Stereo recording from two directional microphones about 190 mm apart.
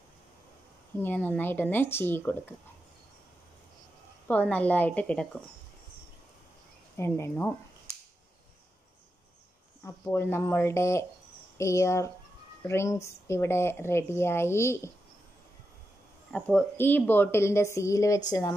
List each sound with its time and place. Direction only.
1.0 s speech: 10° left (ahead or behind)
4.3 s speech: 10° left (ahead or behind)
7.0 s speech: 15° left (ahead or behind)
9.8 s speech: 15° left (ahead or behind)
16.3 s speech: 5° left (ahead or behind)